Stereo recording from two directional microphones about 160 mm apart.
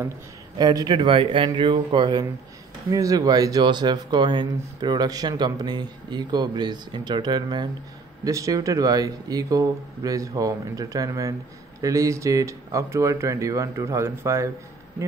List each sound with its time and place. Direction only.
0.6 s speech: 25° right (ahead or behind)